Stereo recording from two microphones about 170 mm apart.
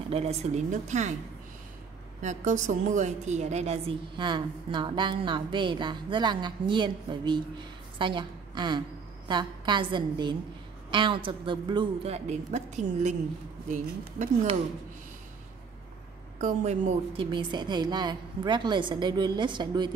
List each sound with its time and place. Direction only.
0.1 s speech: 40° right (ahead or behind)
2.2 s a woman's voice: 45° right (ahead or behind)
16.3 s a woman's voice: 50° right (ahead or behind)
17.1 s a woman's voice: 30° right (ahead or behind)